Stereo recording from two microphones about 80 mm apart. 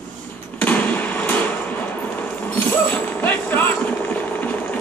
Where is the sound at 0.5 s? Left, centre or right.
Left.